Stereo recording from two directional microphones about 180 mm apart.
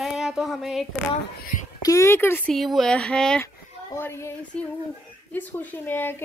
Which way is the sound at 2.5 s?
Centre (ahead or behind).